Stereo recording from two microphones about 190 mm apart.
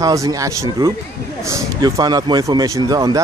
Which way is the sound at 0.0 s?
20° right (ahead or behind).